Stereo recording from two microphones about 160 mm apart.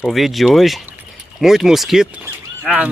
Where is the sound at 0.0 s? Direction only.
Centre (ahead or behind).